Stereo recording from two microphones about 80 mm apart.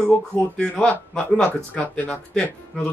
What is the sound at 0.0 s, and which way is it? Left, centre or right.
Speech, centre.